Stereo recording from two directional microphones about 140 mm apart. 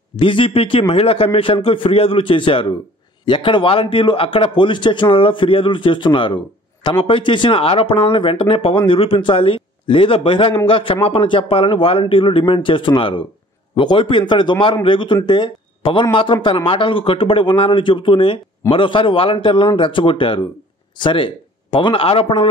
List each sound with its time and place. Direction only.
0.2 s a man's voice: 40° left (ahead or behind)